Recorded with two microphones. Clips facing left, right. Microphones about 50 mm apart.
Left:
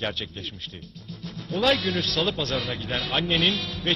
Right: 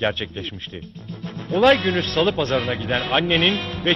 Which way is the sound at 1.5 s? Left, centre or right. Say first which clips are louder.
Right 7 dB; right.